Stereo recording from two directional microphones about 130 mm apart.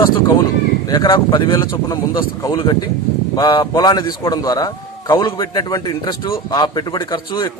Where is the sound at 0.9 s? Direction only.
30° left (ahead or behind).